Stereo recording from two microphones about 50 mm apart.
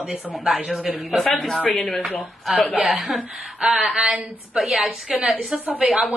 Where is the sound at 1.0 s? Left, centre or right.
Centre.